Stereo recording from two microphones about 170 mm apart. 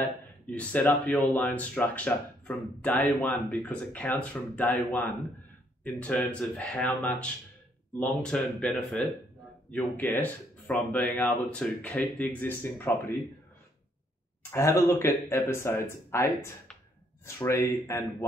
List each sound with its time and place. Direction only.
0.0 s speech: 10° left (ahead or behind)
14.5 s speech: 15° left (ahead or behind)
17.4 s speech: 15° left (ahead or behind)